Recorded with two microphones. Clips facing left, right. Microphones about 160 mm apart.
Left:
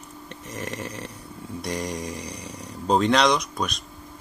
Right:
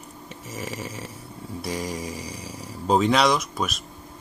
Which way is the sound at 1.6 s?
5° right (ahead or behind).